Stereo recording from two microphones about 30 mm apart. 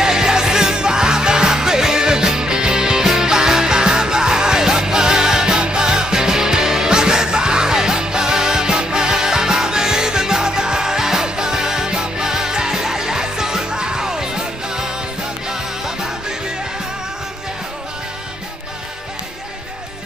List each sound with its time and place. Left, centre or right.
0.0 s music: right